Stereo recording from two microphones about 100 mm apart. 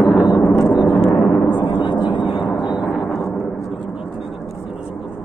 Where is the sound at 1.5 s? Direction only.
50° left (ahead or behind).